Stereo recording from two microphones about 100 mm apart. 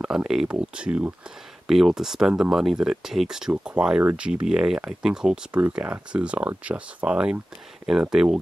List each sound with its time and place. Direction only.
0.0 s speech: 5° right (ahead or behind)
4.0 s speech: 20° right (ahead or behind)
4.3 s speech: 10° right (ahead or behind)